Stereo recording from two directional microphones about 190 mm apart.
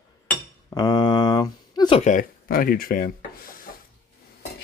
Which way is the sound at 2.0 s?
45° left (ahead or behind).